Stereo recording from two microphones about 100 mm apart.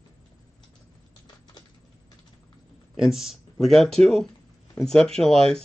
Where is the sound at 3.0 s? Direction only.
Centre (ahead or behind).